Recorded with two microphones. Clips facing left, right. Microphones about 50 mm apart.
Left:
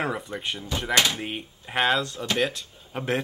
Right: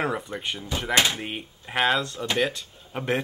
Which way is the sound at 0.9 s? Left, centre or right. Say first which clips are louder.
Even; centre.